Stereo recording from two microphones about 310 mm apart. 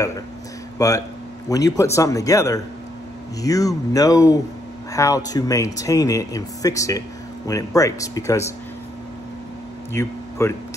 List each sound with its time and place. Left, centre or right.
0.7 s speech: centre
9.9 s speech: centre